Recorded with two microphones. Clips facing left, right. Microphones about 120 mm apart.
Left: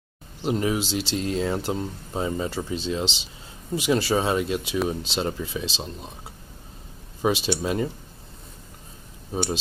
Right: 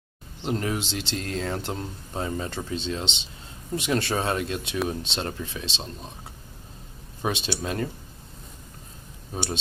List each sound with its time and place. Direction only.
0.4 s speech: 5° left (ahead or behind)
7.2 s speech: 5° left (ahead or behind)